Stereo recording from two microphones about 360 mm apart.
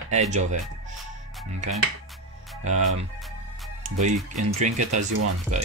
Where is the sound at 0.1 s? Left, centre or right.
Centre.